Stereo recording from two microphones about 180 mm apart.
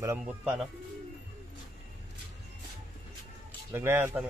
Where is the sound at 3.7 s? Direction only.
10° right (ahead or behind).